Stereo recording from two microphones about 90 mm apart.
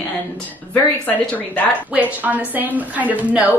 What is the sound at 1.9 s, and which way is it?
A woman's voice, 15° right (ahead or behind).